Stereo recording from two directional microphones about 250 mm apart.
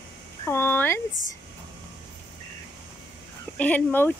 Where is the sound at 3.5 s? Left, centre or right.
Centre.